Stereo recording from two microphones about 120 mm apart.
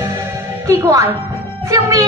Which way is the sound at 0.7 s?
25° right (ahead or behind).